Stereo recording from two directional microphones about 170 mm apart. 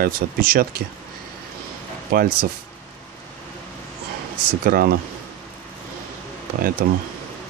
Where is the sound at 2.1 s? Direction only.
60° right (ahead or behind).